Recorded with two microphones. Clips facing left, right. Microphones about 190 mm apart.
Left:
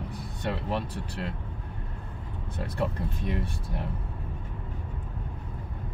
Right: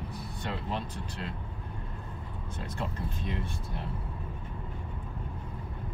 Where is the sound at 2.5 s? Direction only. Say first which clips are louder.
Left 7 dB; 65° left (ahead or behind).